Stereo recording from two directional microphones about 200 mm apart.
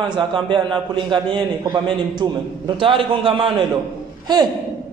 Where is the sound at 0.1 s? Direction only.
25° right (ahead or behind).